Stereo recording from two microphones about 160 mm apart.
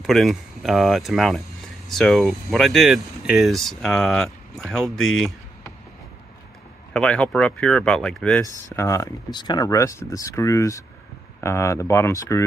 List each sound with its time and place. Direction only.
0.0 s speech: centre (ahead or behind)
6.9 s speech: 5° left (ahead or behind)